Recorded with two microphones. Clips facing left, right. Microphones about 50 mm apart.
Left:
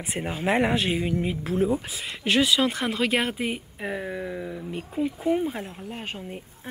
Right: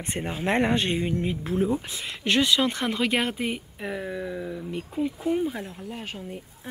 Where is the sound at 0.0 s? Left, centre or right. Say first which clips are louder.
Left 1 dB; centre.